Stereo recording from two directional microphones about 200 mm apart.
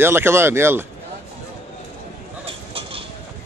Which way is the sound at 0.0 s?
10° right (ahead or behind).